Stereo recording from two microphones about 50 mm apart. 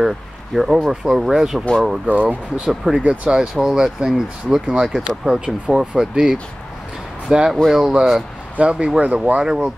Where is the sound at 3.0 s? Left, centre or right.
Right.